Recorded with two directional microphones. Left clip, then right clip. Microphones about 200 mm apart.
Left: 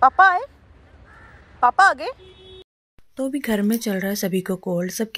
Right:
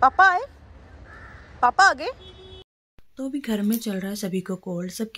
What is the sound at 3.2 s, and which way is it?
Speech, 20° left (ahead or behind).